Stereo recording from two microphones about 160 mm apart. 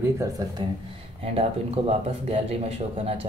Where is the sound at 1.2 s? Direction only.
40° right (ahead or behind).